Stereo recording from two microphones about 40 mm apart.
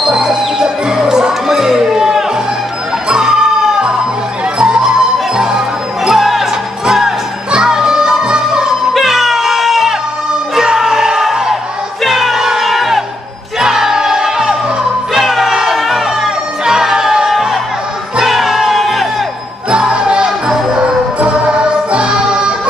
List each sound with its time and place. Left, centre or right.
0.0 s music: centre
6.0 s music: centre
8.9 s music: centre
19.7 s music: centre